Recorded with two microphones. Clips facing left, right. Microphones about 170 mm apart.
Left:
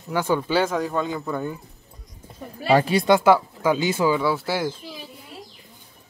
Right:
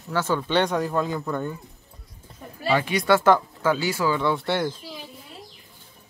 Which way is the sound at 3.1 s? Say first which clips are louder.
Even; 10° left (ahead or behind).